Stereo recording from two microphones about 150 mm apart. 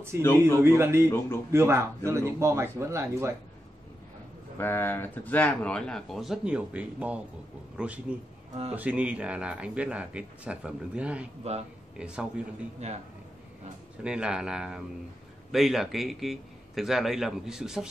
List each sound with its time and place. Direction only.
0.4 s speech: 15° right (ahead or behind)
4.6 s a man's voice: 15° left (ahead or behind); by 11.2 s 10° right (ahead or behind)
11.4 s a man's voice: 45° right (ahead or behind)
12.0 s speech: 5° right (ahead or behind)
12.8 s a man's voice: 45° right (ahead or behind)
14.0 s a man's voice: 5° right (ahead or behind)